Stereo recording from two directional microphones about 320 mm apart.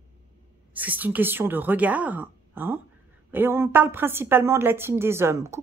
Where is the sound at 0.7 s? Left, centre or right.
Centre.